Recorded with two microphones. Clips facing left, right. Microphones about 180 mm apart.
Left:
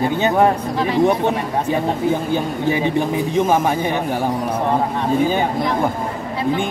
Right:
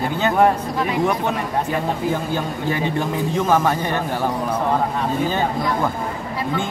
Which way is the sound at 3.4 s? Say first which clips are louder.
Left 2 dB; 20° left (ahead or behind).